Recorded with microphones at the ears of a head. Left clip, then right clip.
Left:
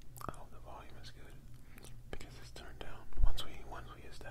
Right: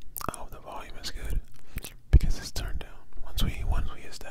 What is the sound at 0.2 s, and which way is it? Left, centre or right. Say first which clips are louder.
Whispering: right 11 dB; right.